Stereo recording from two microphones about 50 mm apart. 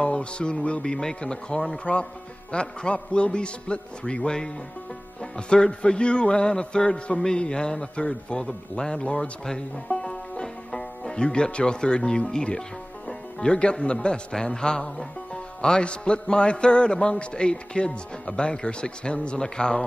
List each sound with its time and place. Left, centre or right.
0.0 s a man's voice: left
0.9 s music: centre
2.5 s a man's voice: centre
5.2 s music: centre
15.6 s a man's voice: centre